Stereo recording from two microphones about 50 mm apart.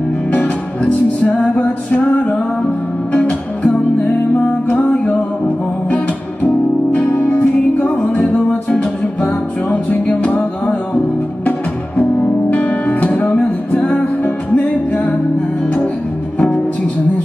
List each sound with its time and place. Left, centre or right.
0.3 s music: left
8.5 s music: left
12.0 s music: left
16.3 s music: centre